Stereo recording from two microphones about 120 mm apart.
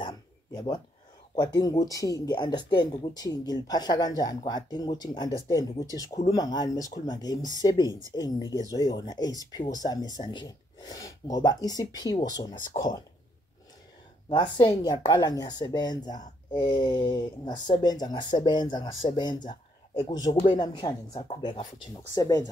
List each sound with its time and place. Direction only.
0.0 s a sound: 35° left (ahead or behind)
1.3 s speech: 35° left (ahead or behind)
14.3 s speech: 40° left (ahead or behind)